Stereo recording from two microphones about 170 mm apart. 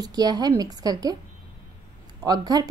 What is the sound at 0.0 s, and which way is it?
Speech, 25° right (ahead or behind).